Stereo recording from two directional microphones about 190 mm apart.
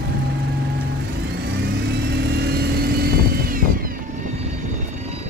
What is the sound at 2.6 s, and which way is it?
Vehicle, 55° right (ahead or behind).